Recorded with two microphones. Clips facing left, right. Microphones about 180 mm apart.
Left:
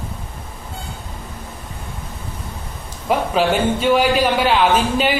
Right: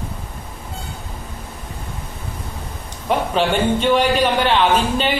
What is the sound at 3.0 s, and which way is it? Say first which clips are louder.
A man's voice: left 1 dB; 5° left (ahead or behind).